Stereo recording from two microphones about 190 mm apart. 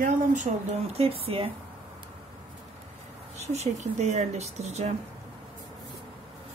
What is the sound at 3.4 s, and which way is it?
Speech, 35° right (ahead or behind).